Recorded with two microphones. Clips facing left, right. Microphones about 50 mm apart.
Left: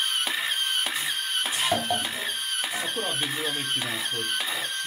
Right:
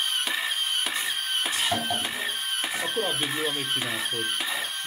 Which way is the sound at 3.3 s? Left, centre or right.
Centre.